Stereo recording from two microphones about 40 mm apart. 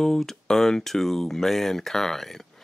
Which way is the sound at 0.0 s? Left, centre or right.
Centre.